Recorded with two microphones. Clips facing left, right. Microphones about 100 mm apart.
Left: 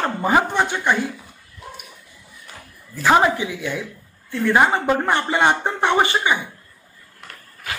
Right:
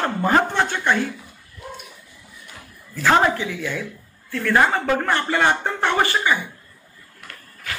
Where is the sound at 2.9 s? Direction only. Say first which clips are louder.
Left 1 dB; 15° left (ahead or behind).